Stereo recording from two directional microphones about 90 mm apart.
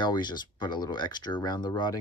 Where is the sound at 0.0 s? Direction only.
55° left (ahead or behind).